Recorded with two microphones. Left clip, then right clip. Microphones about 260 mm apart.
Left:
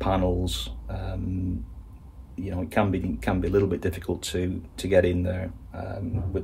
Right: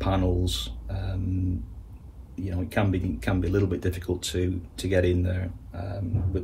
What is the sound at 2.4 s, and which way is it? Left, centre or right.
Speech, left.